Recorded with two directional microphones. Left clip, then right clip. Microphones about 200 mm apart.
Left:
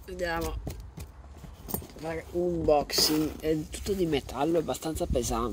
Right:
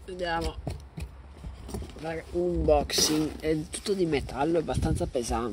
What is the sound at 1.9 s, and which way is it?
Speech, centre (ahead or behind).